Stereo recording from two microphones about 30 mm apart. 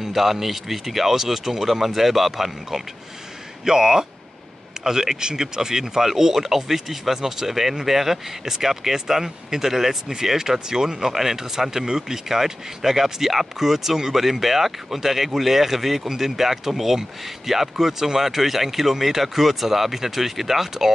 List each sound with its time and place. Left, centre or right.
0.0 s speech: centre